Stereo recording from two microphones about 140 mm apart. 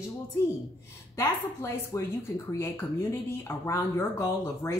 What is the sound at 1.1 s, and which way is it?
A woman's voice, 20° left (ahead or behind).